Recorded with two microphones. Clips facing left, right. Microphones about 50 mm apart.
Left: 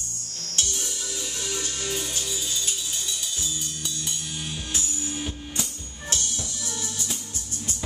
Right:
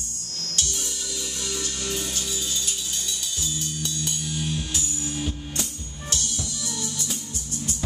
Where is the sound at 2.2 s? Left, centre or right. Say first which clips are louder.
Even; centre.